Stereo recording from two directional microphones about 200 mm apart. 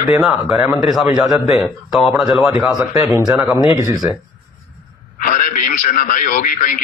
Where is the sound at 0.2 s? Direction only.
Centre (ahead or behind).